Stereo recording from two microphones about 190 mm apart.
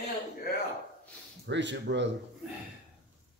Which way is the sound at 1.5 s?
70° right (ahead or behind).